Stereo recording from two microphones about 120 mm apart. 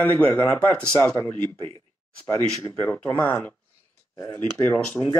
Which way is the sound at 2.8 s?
15° left (ahead or behind).